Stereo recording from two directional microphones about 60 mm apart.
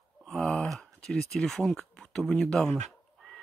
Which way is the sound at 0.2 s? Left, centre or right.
Centre.